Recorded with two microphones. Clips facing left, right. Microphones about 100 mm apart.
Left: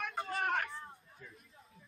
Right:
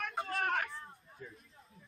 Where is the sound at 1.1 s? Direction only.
30° right (ahead or behind).